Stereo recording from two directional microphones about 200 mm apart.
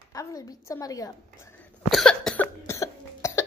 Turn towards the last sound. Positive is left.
turn(degrees=15)  # may be behind; listen again after turning